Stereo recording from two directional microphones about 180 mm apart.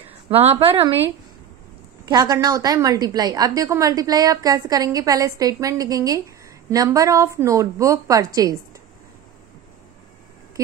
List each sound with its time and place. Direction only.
0.3 s a woman's voice: 35° right (ahead or behind)
2.0 s a woman's voice: 20° right (ahead or behind)